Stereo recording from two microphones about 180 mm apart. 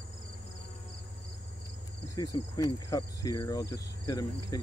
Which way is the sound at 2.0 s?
20° left (ahead or behind).